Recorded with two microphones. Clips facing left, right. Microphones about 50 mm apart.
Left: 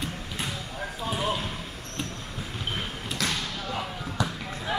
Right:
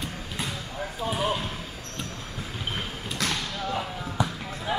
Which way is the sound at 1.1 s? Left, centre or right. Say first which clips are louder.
Right 1 dB; centre.